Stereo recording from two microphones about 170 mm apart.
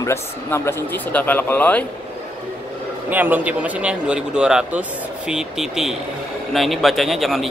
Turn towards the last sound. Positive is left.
turn(degrees=0)  # may be behind; listen again after turning